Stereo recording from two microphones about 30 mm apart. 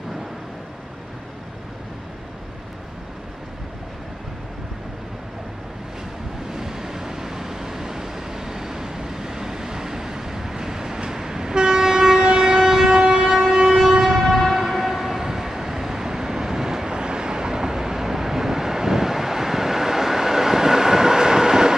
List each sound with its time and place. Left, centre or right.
6.5 s vehicle: centre
13.0 s train: right
16.9 s vehicle: right